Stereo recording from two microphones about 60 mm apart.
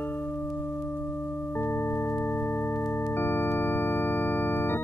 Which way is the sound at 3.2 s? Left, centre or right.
Left.